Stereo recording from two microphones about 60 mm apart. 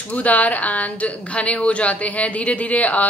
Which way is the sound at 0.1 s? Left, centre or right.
Left.